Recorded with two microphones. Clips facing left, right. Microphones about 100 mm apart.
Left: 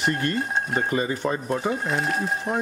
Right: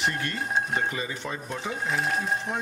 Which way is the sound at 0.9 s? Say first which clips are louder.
Left 8 dB; 45° left (ahead or behind).